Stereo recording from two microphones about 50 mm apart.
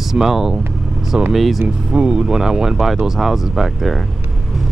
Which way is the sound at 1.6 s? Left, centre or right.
Right.